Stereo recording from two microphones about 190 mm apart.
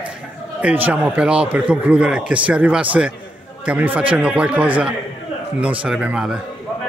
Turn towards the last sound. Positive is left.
turn(degrees=-5)  # may be behind; listen again after turning